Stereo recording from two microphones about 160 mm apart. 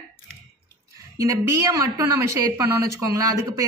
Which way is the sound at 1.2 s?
20° right (ahead or behind).